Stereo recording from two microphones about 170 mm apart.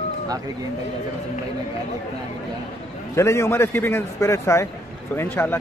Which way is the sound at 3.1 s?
15° left (ahead or behind).